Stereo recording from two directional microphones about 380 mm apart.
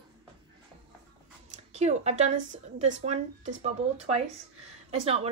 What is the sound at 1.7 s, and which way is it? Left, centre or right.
Speech, centre.